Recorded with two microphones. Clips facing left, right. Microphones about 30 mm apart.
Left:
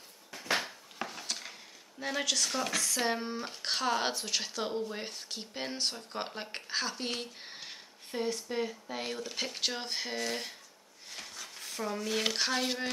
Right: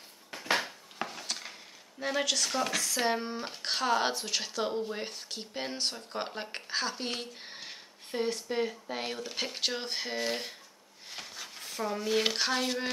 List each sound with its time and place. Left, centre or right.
0.6 s speech: centre